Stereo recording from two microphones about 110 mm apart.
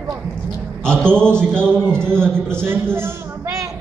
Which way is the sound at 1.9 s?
20° right (ahead or behind).